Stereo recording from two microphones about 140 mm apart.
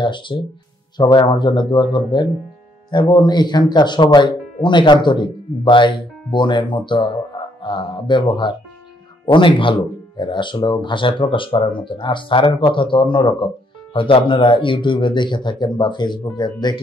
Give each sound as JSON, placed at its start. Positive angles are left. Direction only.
{"t": 0.0, "sound": "speech", "side_deg": 35}